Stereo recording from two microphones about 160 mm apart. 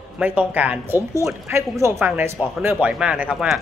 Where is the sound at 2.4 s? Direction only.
5° right (ahead or behind).